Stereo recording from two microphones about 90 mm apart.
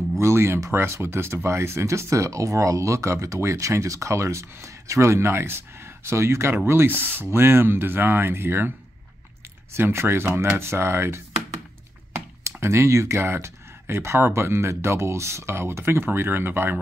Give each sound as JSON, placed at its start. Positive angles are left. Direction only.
{"t": 0.2, "sound": "speech", "side_deg": -30}